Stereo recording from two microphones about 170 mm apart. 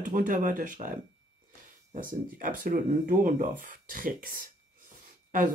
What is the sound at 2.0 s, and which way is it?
Speech, 50° right (ahead or behind).